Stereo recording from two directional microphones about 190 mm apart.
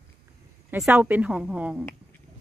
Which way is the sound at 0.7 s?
10° right (ahead or behind).